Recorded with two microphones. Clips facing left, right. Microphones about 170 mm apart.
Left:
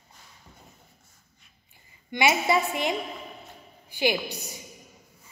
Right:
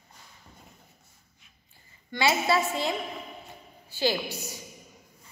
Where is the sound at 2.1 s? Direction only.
15° left (ahead or behind).